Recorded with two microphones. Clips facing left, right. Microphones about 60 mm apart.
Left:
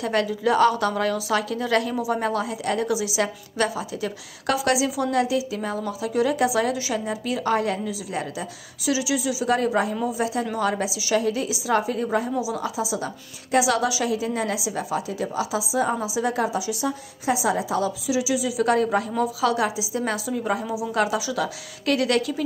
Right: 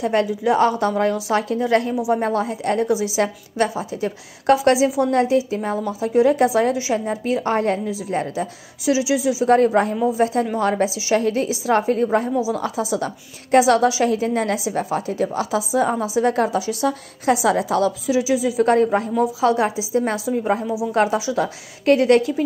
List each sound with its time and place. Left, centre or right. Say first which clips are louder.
0.0 s a woman's voice: right 3 dB; right
18.1 s a woman's voice: right 4 dB; right